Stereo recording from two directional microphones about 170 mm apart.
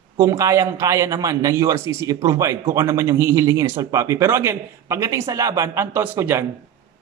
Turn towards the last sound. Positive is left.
turn(degrees=-15)  # may be behind; listen again after turning